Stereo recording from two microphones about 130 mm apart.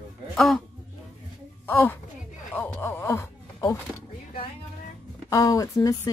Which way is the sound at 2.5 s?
15° left (ahead or behind).